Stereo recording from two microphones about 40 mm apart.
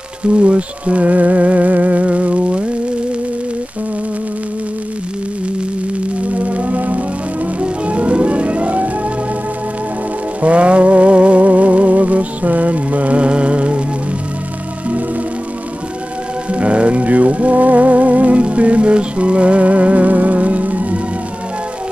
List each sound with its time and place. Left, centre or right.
0.3 s music: right
6.3 s music: right
10.4 s music: right
16.5 s music: right